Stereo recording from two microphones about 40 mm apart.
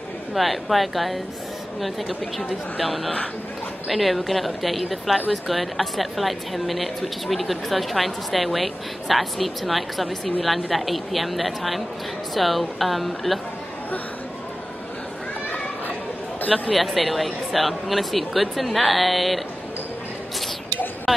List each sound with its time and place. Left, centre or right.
0.3 s a woman's voice: centre
16.3 s speech: left
16.7 s a woman's voice: centre